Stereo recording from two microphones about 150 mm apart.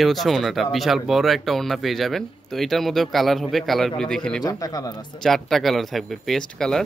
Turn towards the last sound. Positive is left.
turn(degrees=5)  # may be behind; listen again after turning